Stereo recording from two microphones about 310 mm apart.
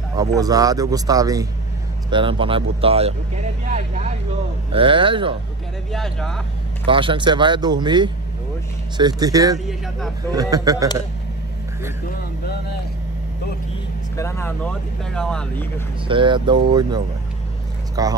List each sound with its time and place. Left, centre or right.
0.4 s speech: centre
5.9 s speech: centre
6.9 s speech: centre
9.7 s speech: centre
10.3 s speech: centre
14.1 s speech: centre
16.1 s speech: centre
18.0 s speech: centre